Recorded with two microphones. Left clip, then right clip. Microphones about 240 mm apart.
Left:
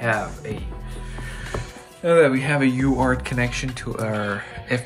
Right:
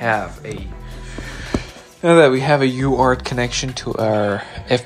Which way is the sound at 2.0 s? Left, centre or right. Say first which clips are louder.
Right 5 dB; centre.